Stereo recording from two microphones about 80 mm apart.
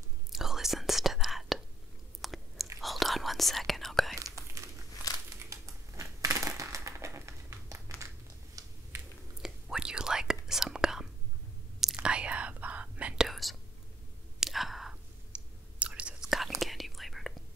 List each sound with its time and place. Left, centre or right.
0.3 s whispering: centre
2.2 s chewing: centre
2.8 s whispering: centre
4.6 s crumpling: right
5.1 s crumpling: left
5.5 s crushing: right
8.6 s a sound: right
9.4 s whispering: centre
13.3 s whispering: centre
15.3 s whispering: centre
16.3 s whispering: centre